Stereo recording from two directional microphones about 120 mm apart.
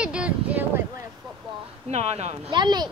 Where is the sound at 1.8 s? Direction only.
65° right (ahead or behind).